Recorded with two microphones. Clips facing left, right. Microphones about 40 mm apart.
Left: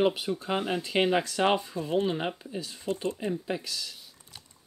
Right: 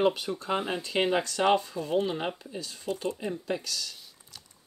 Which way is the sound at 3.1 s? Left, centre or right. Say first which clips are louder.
Left 2 dB; centre.